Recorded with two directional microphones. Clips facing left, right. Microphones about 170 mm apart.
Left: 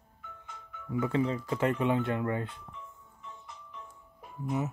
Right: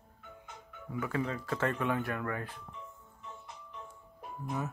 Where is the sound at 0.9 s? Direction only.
25° left (ahead or behind).